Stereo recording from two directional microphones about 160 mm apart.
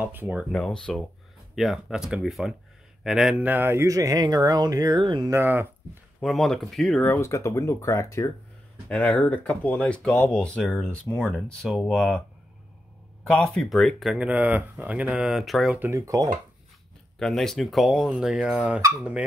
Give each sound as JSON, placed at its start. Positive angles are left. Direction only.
{"t": 0.0, "sound": "speech", "side_deg": -10}
{"t": 0.5, "sound": "speech", "side_deg": 5}
{"t": 5.3, "sound": "speech", "side_deg": -15}
{"t": 6.2, "sound": "speech", "side_deg": 0}
{"t": 8.8, "sound": "speech", "side_deg": 5}
{"t": 13.4, "sound": "speech", "side_deg": 0}
{"t": 15.8, "sound": "speech", "side_deg": -20}
{"t": 17.2, "sound": "speech", "side_deg": 0}